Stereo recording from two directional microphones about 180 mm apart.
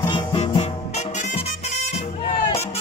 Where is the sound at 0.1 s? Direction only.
30° left (ahead or behind).